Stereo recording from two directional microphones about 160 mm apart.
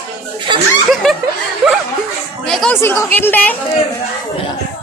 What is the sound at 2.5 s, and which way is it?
Chatter, 5° left (ahead or behind).